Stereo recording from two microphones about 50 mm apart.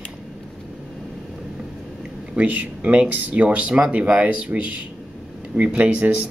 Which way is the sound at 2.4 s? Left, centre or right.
Right.